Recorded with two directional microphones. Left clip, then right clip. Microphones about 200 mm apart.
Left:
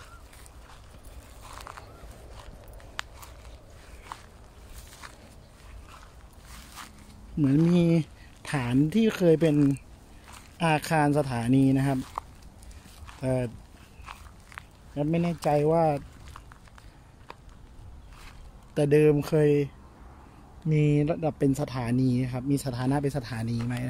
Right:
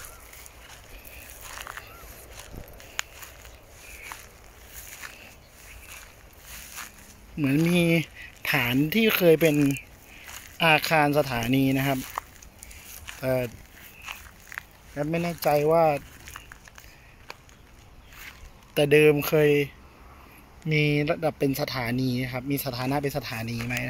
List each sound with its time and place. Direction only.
3.0 s walk: 10° right (ahead or behind)
4.1 s a sound: 5° right (ahead or behind)
5.0 s walk: 5° left (ahead or behind)
6.8 s walk: 5° left (ahead or behind)
7.5 s speech: centre (ahead or behind)
14.5 s a sound: centre (ahead or behind)
15.0 s speech: 15° left (ahead or behind)
18.8 s speech: 5° left (ahead or behind)